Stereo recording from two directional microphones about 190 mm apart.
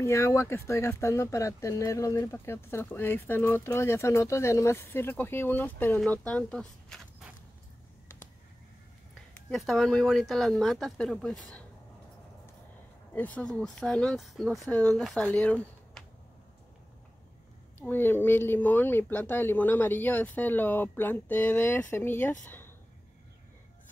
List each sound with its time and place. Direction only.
0.0 s speech: 15° left (ahead or behind); by 7.3 s centre (ahead or behind)
9.5 s speech: centre (ahead or behind)
13.1 s speech: 10° left (ahead or behind)
17.7 s speech: 10° left (ahead or behind)